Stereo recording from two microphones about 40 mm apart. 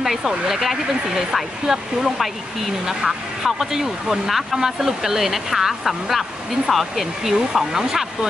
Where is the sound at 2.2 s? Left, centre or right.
Centre.